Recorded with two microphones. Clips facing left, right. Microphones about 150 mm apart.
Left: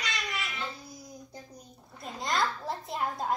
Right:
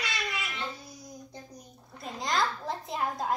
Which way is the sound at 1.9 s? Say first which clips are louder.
Right 1 dB; centre (ahead or behind).